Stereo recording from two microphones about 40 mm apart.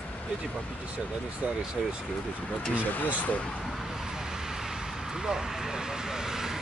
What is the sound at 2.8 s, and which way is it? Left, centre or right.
Speech, left.